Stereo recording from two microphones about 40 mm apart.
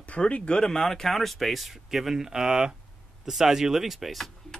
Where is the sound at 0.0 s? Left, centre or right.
Left.